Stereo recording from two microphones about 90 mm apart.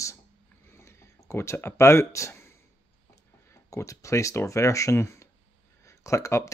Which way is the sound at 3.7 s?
35° left (ahead or behind).